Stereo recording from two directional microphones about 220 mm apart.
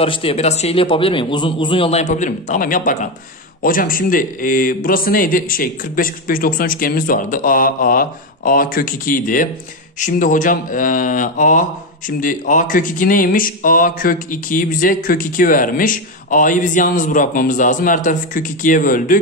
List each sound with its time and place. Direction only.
0.0 s a man's voice: 25° left (ahead or behind)